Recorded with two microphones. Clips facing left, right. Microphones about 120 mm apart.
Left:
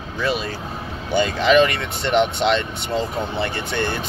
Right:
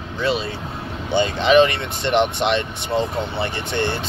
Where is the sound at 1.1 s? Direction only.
25° right (ahead or behind).